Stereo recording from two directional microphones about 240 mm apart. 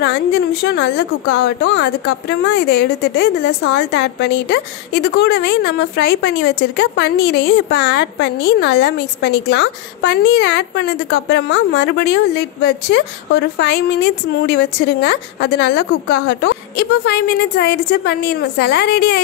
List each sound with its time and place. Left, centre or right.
0.0 s a woman's voice: left